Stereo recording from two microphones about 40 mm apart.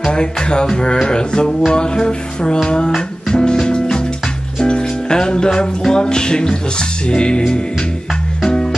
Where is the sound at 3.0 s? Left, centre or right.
Centre.